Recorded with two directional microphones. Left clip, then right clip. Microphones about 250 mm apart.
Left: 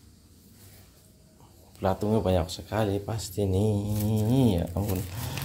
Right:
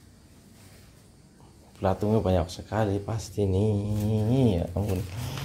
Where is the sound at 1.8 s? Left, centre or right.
Centre.